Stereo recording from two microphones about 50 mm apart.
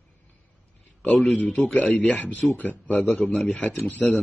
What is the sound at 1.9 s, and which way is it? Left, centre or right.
Speech, centre.